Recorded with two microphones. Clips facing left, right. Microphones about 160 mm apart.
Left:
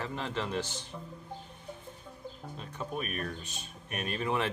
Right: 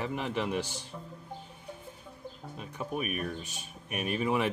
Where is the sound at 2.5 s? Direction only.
10° right (ahead or behind).